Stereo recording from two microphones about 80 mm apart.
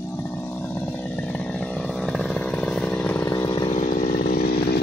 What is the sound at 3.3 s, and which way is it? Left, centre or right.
Chainsaw, left.